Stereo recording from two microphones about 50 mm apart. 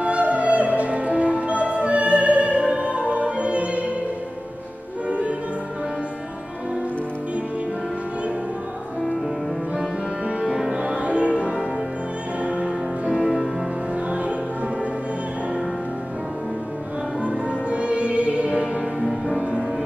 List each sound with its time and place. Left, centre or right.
0.0 s music: right
10.4 s music: centre
10.8 s music: right
13.2 s music: centre
17.2 s music: right